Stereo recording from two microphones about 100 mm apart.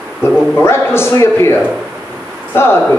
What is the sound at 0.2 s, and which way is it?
Speech, 25° left (ahead or behind).